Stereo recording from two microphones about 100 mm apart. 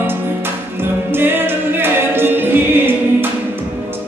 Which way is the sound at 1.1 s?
20° right (ahead or behind).